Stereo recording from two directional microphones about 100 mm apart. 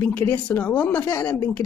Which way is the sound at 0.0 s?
20° left (ahead or behind).